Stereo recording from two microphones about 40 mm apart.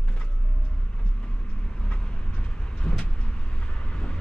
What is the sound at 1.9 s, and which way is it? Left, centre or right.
Vehicle, left.